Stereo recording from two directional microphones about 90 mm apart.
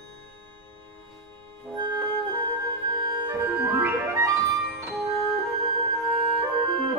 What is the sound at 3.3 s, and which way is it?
Music, 25° right (ahead or behind).